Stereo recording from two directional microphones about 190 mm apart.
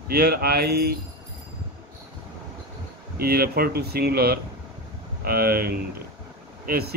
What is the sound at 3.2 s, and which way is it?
A man's voice, 55° right (ahead or behind).